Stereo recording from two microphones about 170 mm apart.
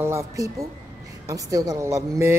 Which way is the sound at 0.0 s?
15° right (ahead or behind).